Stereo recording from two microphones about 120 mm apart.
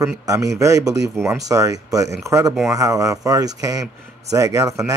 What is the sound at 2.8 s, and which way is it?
Speech, 30° right (ahead or behind).